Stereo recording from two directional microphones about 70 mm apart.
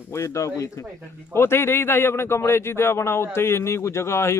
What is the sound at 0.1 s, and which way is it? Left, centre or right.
Speech, left.